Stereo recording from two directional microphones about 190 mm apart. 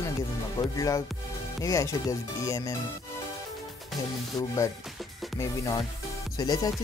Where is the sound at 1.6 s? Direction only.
15° left (ahead or behind).